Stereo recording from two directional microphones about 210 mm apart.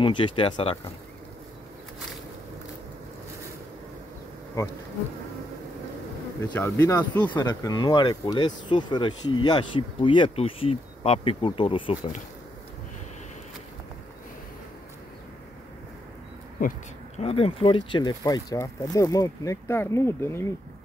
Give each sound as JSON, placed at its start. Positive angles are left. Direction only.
{"t": 0.0, "sound": "speech", "side_deg": 25}
{"t": 4.6, "sound": "speech", "side_deg": 15}
{"t": 6.5, "sound": "speech", "side_deg": 10}
{"t": 17.2, "sound": "speech", "side_deg": 25}